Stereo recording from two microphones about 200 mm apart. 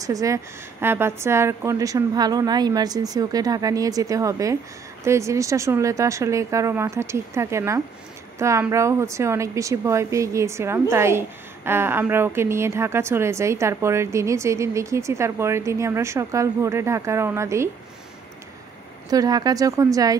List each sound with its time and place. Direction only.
0.0 s a woman's voice: 15° right (ahead or behind)
19.0 s a woman's voice: 20° right (ahead or behind)